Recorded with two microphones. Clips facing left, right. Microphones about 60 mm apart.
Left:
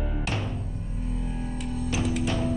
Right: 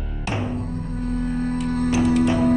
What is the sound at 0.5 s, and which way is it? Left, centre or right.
Music, right.